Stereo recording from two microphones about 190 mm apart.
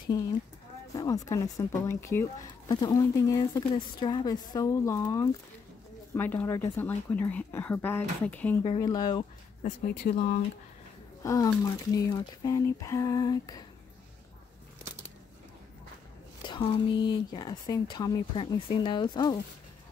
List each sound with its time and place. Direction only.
0.9 s speech: 20° left (ahead or behind)
8.6 s speech: 20° left (ahead or behind)
9.6 s a woman's voice: 45° left (ahead or behind)
11.2 s speech: 15° left (ahead or behind)
16.4 s speech: 25° left (ahead or behind)